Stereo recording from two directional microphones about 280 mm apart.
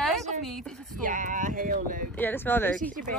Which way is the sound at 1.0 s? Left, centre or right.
Right.